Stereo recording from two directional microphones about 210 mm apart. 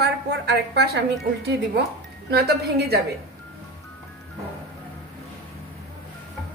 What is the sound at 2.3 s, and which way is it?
Speech, 50° right (ahead or behind).